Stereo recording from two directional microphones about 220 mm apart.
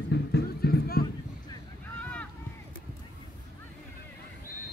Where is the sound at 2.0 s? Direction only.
5° left (ahead or behind).